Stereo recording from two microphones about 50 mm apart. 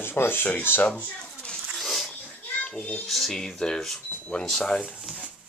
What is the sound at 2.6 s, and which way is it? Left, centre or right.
Speech, centre.